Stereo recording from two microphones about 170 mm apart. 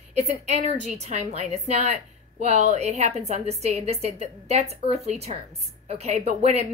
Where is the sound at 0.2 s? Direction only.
40° right (ahead or behind).